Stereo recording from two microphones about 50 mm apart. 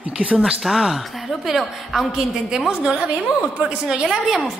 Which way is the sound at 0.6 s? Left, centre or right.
Centre.